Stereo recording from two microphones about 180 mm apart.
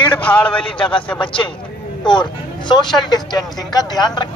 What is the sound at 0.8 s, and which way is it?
Speech, 30° left (ahead or behind).